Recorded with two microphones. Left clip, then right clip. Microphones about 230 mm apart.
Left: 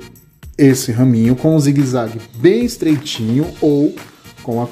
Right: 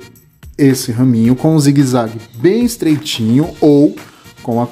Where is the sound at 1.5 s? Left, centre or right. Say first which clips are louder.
Right 1 dB; centre.